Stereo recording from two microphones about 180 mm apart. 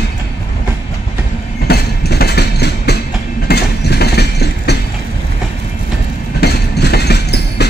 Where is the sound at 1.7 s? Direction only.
65° left (ahead or behind).